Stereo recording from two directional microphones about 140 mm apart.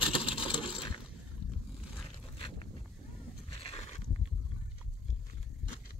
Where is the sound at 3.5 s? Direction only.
45° left (ahead or behind).